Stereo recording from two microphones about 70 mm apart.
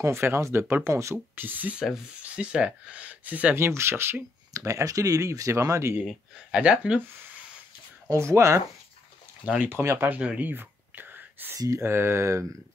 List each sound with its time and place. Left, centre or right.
0.0 s speech: right
2.2 s speech: centre
3.5 s speech: right
4.6 s speech: right
6.5 s speech: centre
8.1 s speech: right
9.6 s speech: right
10.5 s whispering: right
11.5 s speech: right
11.8 s speech: right